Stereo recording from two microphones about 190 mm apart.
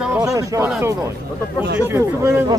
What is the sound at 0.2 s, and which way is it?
Speech, 15° right (ahead or behind).